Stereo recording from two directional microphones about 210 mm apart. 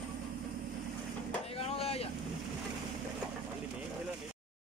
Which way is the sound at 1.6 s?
30° left (ahead or behind).